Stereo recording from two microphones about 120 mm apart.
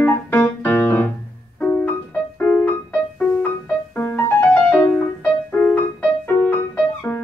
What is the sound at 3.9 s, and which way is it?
Music, 20° left (ahead or behind).